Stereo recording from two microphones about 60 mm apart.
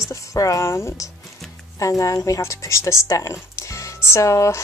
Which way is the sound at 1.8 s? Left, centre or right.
Left.